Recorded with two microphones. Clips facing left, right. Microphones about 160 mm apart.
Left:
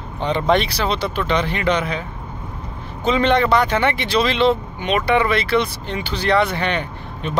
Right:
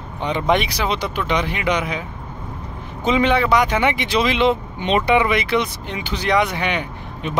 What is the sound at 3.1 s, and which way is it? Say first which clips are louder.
Speech: left 1 dB; 10° right (ahead or behind).